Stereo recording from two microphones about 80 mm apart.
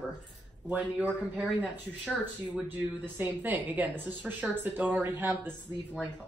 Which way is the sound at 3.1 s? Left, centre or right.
Right.